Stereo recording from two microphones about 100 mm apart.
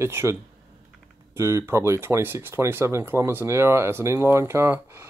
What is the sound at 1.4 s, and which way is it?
Speech, 30° right (ahead or behind).